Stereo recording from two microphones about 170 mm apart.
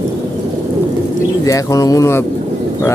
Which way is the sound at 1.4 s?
20° left (ahead or behind).